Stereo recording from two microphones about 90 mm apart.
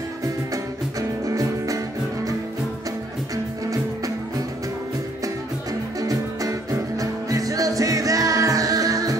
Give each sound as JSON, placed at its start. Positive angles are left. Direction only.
{"t": 1.2, "sound": "music", "side_deg": -40}
{"t": 5.9, "sound": "music", "side_deg": -40}